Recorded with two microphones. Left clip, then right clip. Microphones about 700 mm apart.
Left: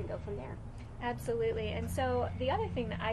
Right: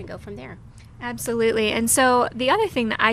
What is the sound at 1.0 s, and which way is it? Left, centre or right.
Speech, right.